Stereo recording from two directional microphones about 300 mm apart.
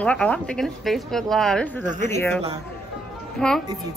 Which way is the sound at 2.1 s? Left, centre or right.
Centre.